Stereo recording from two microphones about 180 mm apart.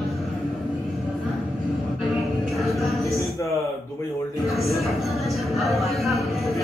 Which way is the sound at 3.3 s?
15° left (ahead or behind).